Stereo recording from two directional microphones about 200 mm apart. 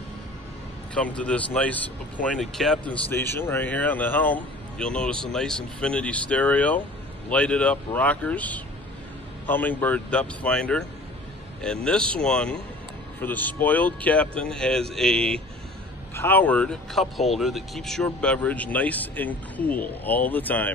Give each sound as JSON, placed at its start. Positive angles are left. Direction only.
{"t": 0.9, "sound": "speech", "side_deg": 5}